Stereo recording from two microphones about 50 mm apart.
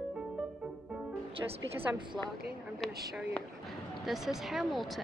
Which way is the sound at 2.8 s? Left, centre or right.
Centre.